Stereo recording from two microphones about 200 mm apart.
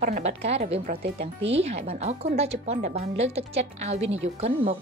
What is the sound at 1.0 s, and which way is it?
Speech, 60° right (ahead or behind).